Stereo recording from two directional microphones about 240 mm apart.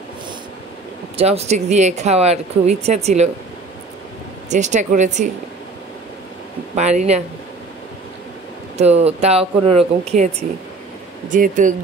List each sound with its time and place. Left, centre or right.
1.1 s speech: right
4.5 s speech: right
6.7 s speech: right
8.7 s speech: right